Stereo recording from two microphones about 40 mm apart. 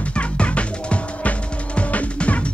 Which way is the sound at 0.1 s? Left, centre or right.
Left.